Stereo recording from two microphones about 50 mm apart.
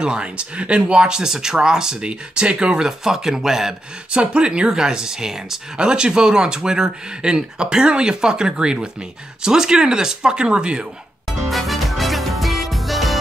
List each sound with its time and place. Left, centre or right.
0.0 s speech: centre
4.1 s speech: right
11.2 s music: centre